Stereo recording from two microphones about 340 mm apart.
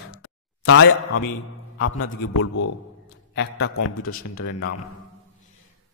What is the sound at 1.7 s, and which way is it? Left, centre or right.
A man's voice, left.